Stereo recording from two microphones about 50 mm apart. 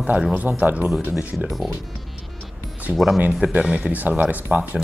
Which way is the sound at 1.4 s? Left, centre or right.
Centre.